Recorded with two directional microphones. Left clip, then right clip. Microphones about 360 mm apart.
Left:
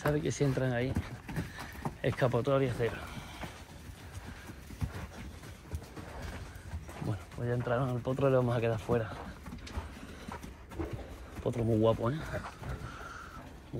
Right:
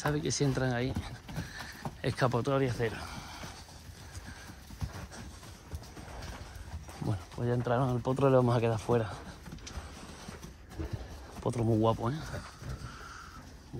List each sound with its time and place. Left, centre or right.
0.0 s speech: centre
7.1 s speech: centre
11.4 s speech: centre